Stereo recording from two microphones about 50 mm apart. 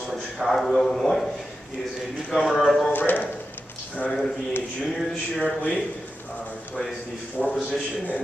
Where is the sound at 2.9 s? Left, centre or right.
Left.